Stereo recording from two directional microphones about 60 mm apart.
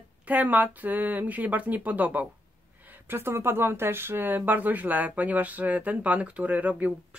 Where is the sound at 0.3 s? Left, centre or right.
Right.